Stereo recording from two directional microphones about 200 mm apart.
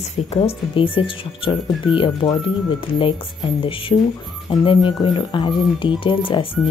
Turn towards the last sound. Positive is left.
turn(degrees=25)  # may be behind; listen again after turning